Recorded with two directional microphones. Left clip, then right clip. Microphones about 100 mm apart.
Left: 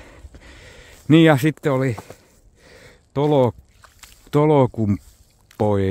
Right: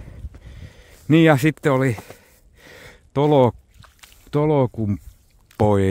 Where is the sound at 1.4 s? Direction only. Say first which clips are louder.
Right 1 dB; 20° right (ahead or behind).